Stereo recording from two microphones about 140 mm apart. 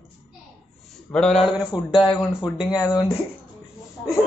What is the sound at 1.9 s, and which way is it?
Speech, 35° left (ahead or behind).